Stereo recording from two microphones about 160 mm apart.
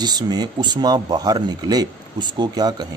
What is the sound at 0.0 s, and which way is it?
Speech, 25° right (ahead or behind).